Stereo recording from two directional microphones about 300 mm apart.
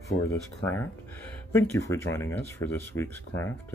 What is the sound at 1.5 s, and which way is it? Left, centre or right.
Speech, centre.